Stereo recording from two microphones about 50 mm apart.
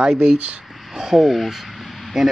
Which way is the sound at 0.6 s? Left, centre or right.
Centre.